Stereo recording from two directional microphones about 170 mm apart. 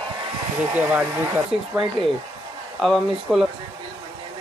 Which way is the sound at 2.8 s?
Centre (ahead or behind).